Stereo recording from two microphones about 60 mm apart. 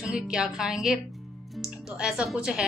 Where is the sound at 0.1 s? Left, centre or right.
Centre.